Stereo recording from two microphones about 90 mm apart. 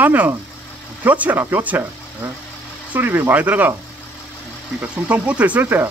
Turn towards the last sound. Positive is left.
turn(degrees=-20)  # may be behind; listen again after turning